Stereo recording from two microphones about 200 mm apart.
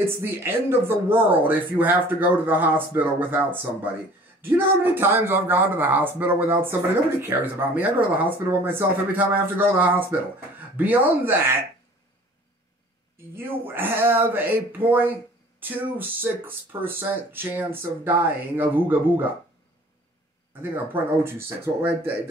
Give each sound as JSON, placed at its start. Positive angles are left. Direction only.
{"t": 0.0, "sound": "speech", "side_deg": -10}
{"t": 13.4, "sound": "speech", "side_deg": -10}
{"t": 20.7, "sound": "speech", "side_deg": -10}